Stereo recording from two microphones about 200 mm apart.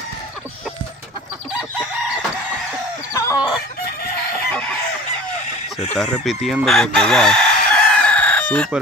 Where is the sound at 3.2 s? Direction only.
15° left (ahead or behind).